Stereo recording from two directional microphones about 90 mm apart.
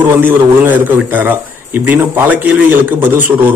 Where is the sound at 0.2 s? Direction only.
20° right (ahead or behind).